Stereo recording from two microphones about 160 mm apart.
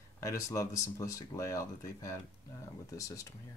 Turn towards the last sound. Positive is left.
turn(degrees=20)  # may be behind; listen again after turning